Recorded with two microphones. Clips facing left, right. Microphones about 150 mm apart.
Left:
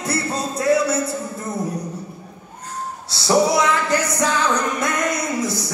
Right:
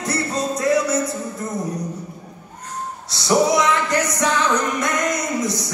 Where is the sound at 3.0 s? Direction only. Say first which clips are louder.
Even; 30° left (ahead or behind).